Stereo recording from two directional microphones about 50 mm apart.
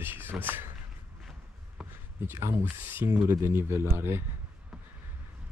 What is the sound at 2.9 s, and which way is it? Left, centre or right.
Speech, right.